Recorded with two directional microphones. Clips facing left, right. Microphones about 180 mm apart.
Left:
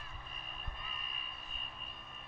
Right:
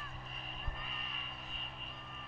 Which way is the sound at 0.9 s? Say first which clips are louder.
Right 2 dB; 80° right.